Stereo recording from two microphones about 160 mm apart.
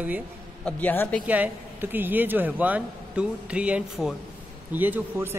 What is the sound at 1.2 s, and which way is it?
Speech, 10° right (ahead or behind).